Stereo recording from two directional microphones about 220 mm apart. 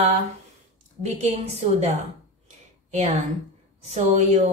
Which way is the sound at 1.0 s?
30° right (ahead or behind).